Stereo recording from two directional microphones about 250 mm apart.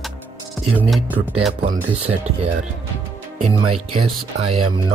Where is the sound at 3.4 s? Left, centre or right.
Right.